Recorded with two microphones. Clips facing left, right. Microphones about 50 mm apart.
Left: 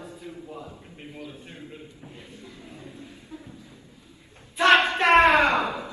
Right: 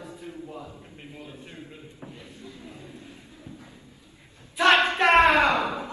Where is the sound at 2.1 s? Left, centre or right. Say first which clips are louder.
Even; left.